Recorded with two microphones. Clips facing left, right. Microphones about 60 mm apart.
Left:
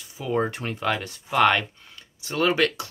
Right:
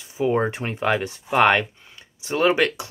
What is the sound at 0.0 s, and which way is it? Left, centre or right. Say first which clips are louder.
Speech: right 4 dB; right.